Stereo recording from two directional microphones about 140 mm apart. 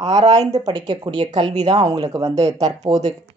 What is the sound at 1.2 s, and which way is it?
Speech, 55° right (ahead or behind).